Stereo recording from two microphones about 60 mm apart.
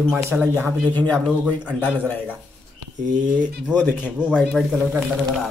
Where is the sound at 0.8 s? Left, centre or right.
Left.